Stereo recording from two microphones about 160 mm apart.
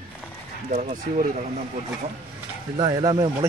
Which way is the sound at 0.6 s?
50° right (ahead or behind).